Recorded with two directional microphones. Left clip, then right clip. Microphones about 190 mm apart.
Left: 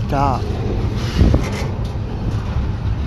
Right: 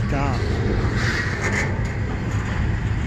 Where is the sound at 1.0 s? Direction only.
55° left (ahead or behind).